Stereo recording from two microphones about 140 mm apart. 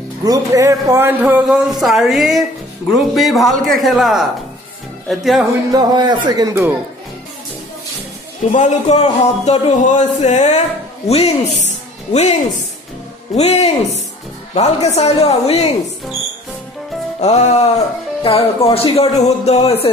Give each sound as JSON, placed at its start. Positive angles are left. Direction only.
{"t": 0.2, "sound": "speech", "side_deg": -25}
{"t": 1.2, "sound": "speech", "side_deg": -5}
{"t": 5.7, "sound": "speech", "side_deg": -30}
{"t": 8.5, "sound": "speech", "side_deg": 60}
{"t": 13.4, "sound": "speech", "side_deg": 50}
{"t": 17.2, "sound": "speech", "side_deg": 50}